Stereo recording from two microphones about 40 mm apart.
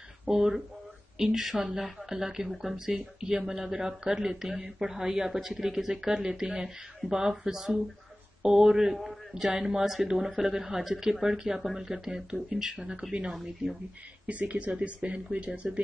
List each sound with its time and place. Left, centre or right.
0.2 s speech: centre
9.3 s speech: centre
13.3 s speech: centre
14.2 s speech: right